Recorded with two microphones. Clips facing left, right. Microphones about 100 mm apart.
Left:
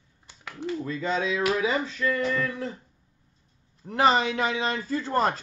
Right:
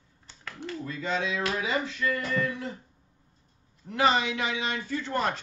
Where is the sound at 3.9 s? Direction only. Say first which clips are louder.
Left 3 dB; 35° left (ahead or behind).